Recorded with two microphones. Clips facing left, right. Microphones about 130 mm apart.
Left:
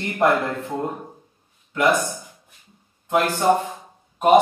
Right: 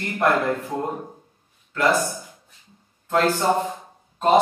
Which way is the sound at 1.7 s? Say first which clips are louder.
Left 1 dB; 20° left (ahead or behind).